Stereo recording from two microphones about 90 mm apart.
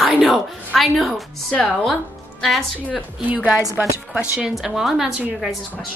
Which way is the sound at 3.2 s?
15° right (ahead or behind).